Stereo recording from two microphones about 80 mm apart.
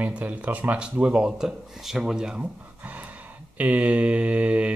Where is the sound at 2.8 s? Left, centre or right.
Right.